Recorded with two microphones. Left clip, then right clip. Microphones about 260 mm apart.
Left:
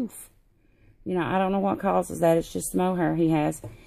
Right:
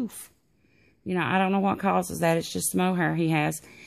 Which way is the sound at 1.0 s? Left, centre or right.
Right.